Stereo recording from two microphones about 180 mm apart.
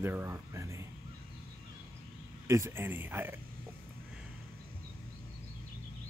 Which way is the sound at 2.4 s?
15° right (ahead or behind).